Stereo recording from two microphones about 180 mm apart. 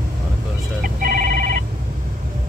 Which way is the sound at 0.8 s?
50° right (ahead or behind).